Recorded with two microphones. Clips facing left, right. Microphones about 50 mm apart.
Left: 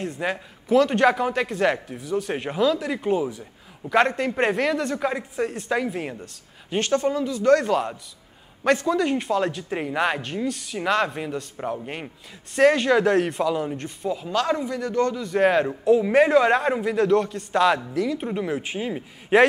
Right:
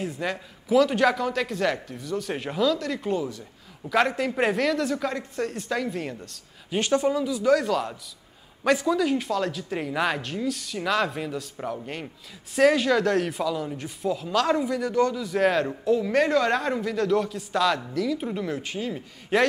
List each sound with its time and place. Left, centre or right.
0.2 s speech: centre
6.8 s speech: centre
7.1 s speech: centre
7.7 s speech: centre
12.5 s speech: centre
15.1 s speech: centre
16.0 s speech: centre
17.1 s speech: centre; by 19.4 s left